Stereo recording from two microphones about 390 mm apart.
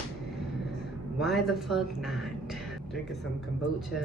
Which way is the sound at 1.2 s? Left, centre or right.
Centre.